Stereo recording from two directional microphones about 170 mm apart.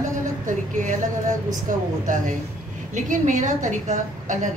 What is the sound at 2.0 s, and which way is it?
A woman's voice, 50° right (ahead or behind).